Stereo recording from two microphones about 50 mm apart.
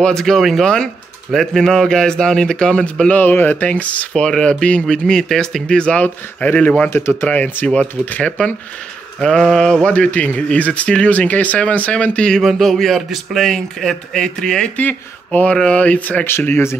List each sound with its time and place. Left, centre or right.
0.0 s a man's voice: centre
3.2 s speech: left
4.1 s a man's voice: centre
5.7 s speech: left
6.0 s speech: left
6.9 s speech: left
7.2 s speech: left
9.2 s a man's voice: centre
9.8 s speech: left
12.4 s a man's voice: centre
14.8 s speech: left
15.5 s a man's voice: centre
15.8 s speech: left